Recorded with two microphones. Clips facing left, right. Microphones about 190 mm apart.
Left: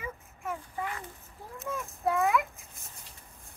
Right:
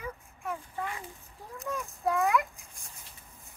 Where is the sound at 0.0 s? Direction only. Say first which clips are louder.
Even; 5° left (ahead or behind).